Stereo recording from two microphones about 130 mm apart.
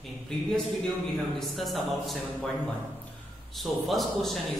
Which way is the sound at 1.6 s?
Centre (ahead or behind).